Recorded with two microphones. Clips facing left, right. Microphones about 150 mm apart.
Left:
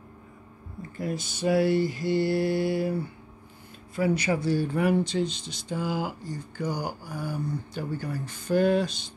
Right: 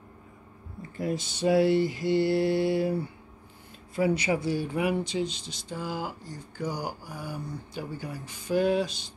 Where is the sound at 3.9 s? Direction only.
25° right (ahead or behind).